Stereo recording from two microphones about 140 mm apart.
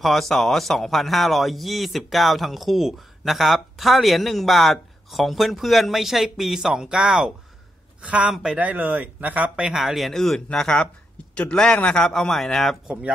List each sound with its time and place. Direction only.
0.0 s speech: centre (ahead or behind)